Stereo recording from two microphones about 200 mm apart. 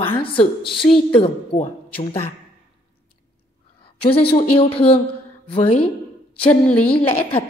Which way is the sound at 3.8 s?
30° left (ahead or behind).